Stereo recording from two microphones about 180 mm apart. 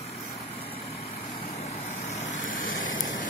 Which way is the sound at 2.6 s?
90° left.